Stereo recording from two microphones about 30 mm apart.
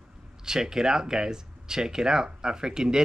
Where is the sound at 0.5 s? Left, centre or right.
Right.